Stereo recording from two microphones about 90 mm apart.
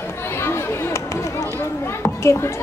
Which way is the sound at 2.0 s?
30° left (ahead or behind).